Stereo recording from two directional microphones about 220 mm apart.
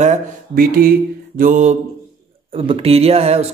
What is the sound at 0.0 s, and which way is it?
A man's voice, 35° right (ahead or behind).